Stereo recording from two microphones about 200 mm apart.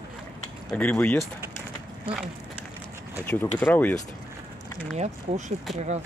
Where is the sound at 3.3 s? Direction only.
10° left (ahead or behind).